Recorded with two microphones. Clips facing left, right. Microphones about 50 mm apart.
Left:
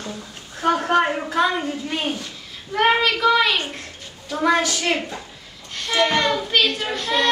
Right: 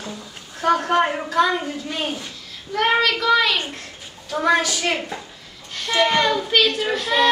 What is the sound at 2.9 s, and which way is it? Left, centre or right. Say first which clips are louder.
Speech: right 2 dB; centre.